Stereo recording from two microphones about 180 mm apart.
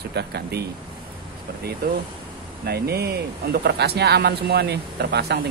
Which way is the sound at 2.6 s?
60° right (ahead or behind).